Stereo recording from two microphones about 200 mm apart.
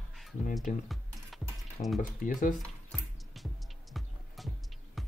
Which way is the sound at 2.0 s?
40° left (ahead or behind).